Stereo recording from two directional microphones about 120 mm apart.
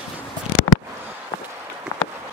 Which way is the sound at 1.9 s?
55° left (ahead or behind).